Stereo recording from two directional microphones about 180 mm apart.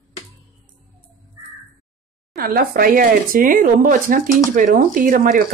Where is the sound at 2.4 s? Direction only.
55° right (ahead or behind).